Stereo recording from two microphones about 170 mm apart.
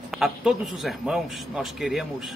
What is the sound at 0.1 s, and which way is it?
A man's voice, centre (ahead or behind).